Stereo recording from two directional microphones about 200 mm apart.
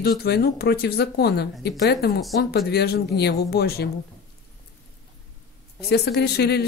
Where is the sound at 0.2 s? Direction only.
55° left (ahead or behind).